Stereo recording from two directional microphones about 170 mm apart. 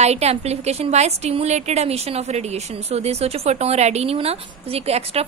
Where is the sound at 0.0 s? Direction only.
40° right (ahead or behind).